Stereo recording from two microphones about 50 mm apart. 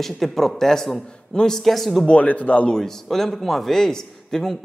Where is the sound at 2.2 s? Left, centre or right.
Left.